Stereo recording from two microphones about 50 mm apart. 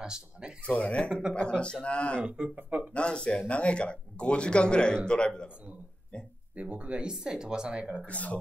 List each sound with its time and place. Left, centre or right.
0.0 s speech: centre
0.7 s speech: left
2.2 s speech: centre
2.5 s speech: right
2.9 s speech: left
6.5 s speech: right
8.1 s speech: left